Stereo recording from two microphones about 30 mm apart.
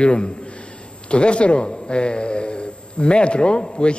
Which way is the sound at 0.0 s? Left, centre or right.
Left.